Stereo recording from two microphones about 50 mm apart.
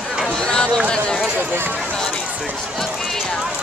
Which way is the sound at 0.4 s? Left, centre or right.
Centre.